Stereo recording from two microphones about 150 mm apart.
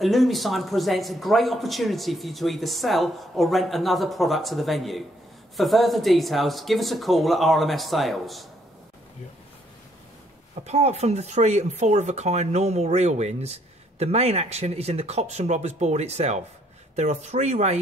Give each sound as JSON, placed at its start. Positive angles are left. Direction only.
{"t": 0.0, "sound": "speech", "side_deg": 0}
{"t": 10.5, "sound": "speech", "side_deg": -45}